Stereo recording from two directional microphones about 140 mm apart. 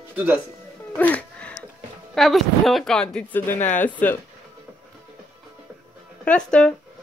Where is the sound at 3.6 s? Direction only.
60° left (ahead or behind).